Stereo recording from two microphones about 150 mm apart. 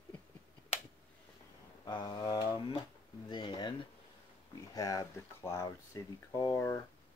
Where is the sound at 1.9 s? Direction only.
30° left (ahead or behind).